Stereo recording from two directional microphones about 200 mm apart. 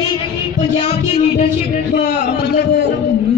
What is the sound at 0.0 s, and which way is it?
Music, 30° left (ahead or behind).